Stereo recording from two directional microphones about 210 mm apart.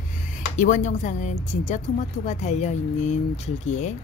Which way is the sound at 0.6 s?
35° left (ahead or behind).